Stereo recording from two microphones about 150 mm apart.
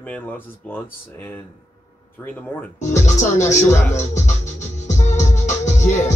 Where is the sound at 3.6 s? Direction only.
50° left (ahead or behind).